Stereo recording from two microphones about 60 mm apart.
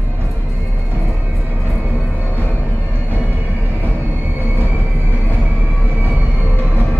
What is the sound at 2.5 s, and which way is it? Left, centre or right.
Music, right.